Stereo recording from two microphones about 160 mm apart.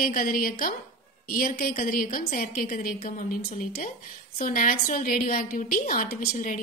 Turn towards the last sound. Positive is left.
turn(degrees=55)  # may be behind; listen again after turning